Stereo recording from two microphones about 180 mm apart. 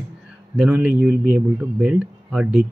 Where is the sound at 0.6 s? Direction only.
5° right (ahead or behind).